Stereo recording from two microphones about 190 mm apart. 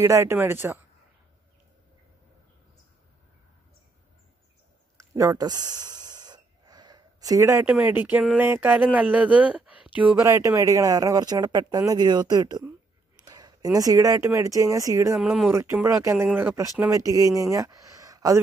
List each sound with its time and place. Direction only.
0.0 s speech: 15° right (ahead or behind)
4.9 s speech: 15° right (ahead or behind)
15.1 s speech: centre (ahead or behind)
15.5 s speech: 15° right (ahead or behind)